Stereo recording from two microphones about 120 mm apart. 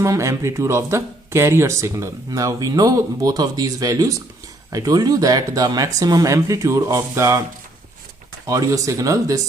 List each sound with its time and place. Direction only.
0.0 s speech: 25° right (ahead or behind)
8.5 s speech: 30° right (ahead or behind)